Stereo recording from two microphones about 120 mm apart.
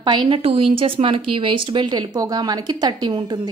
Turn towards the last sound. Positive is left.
turn(degrees=-40)  # may be behind; listen again after turning